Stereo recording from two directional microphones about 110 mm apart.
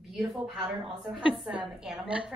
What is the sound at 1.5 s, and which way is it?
Speech, 10° right (ahead or behind).